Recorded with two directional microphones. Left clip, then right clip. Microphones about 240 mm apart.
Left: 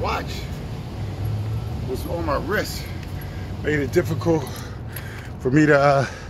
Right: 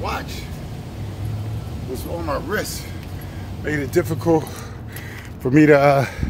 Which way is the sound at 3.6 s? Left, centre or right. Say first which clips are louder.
Even; centre.